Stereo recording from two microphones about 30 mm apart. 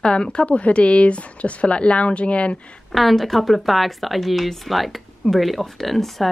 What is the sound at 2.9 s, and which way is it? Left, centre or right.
A woman's voice, centre.